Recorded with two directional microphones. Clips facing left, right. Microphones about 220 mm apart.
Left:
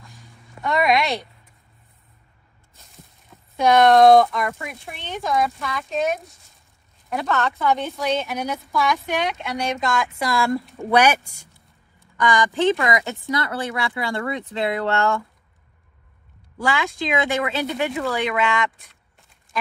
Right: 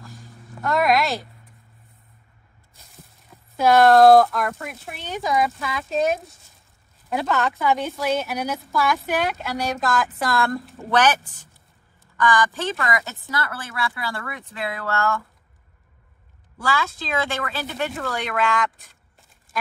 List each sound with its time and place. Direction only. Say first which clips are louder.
0.0 s a sound: right 5 dB; centre (ahead or behind)
3.3 s a woman's voice: even; 5° right (ahead or behind)
10.8 s speech: left 2 dB; 10° left (ahead or behind)
12.2 s speech: left 2 dB; 20° left (ahead or behind)
16.6 s speech: left 2 dB; 15° left (ahead or behind)
17.9 s a woman's voice: left 4 dB; centre (ahead or behind)